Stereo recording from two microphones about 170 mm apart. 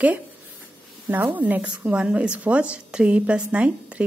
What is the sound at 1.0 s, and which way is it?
A woman's voice, 10° right (ahead or behind).